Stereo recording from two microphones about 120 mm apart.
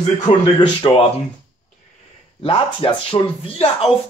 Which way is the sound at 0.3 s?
75° left (ahead or behind).